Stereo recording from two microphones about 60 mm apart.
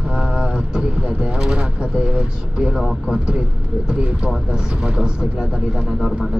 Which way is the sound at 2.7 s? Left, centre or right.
Centre.